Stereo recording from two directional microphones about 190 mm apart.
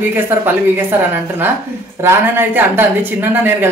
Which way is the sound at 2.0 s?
10° right (ahead or behind).